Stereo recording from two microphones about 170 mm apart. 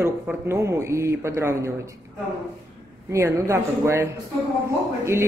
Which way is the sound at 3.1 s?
20° right (ahead or behind).